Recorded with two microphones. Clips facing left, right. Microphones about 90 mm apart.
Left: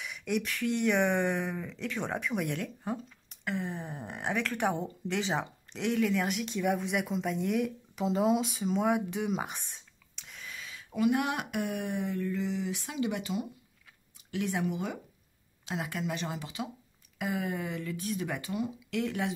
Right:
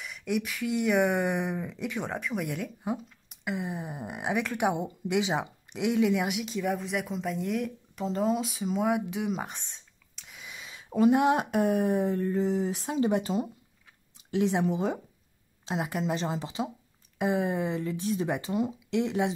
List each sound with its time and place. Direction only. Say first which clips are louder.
0.0 s speech: right 2 dB; centre (ahead or behind)
2.0 s speech: even; centre (ahead or behind)
10.4 s speech: even; 20° right (ahead or behind)